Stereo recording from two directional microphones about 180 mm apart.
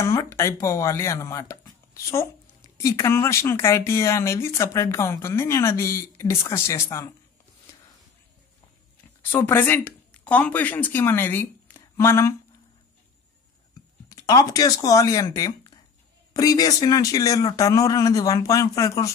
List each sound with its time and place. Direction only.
0.0 s speech: 15° left (ahead or behind)
9.3 s speech: 10° left (ahead or behind)
14.0 s speech: 20° left (ahead or behind)